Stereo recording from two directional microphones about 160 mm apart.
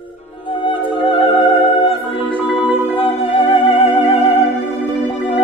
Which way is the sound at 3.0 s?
35° left (ahead or behind).